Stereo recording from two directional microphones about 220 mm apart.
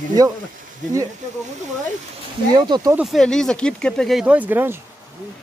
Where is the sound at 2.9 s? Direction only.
Centre (ahead or behind).